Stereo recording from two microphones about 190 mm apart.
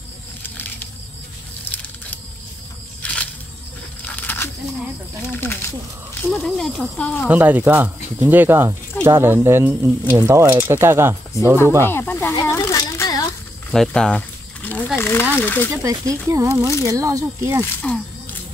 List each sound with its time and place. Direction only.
3.0 s a sound: 5° left (ahead or behind)
5.3 s speech: 10° left (ahead or behind)
6.3 s speech: centre (ahead or behind)
7.2 s speech: 10° right (ahead or behind)
11.8 s a sound: 10° left (ahead or behind)
13.7 s a sound: 5° left (ahead or behind)
15.0 s speech: 10° left (ahead or behind)
15.7 s speech: 15° right (ahead or behind)
17.6 s speech: 5° left (ahead or behind)